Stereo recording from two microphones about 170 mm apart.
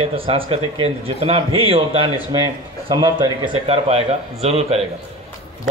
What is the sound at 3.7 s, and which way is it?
A man's voice, 35° right (ahead or behind).